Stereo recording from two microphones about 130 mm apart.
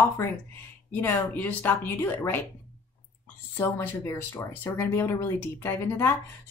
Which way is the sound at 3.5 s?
20° left (ahead or behind).